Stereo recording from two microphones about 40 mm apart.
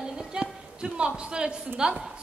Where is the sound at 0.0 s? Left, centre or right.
Centre.